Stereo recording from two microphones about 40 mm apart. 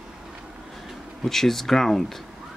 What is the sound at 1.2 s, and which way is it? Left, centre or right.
Speech, centre.